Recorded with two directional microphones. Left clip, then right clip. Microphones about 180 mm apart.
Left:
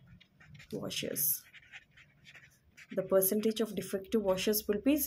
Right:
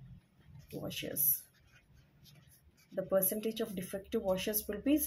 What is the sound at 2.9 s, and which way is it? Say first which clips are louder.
Speech: left 4 dB; 40° left (ahead or behind).